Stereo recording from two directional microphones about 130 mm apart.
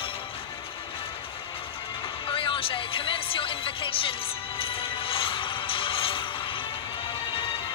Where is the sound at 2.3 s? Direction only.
45° left (ahead or behind).